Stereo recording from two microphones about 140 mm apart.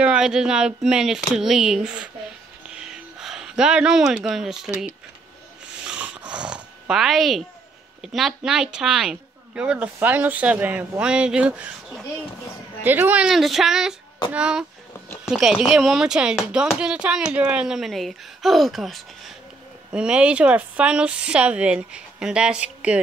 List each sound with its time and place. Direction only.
0.0 s speech: 5° right (ahead or behind)
2.7 s a sound: 5° right (ahead or behind)
5.9 s snoring: 10° right (ahead or behind)
8.0 s speech: centre (ahead or behind)